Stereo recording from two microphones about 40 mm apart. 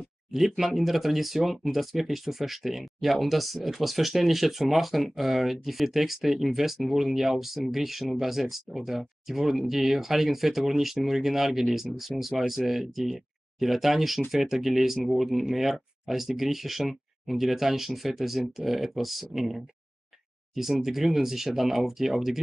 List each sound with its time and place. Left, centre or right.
0.3 s speech: centre
20.8 s speech: centre